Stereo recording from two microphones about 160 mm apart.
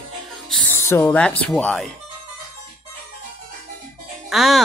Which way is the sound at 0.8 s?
15° left (ahead or behind).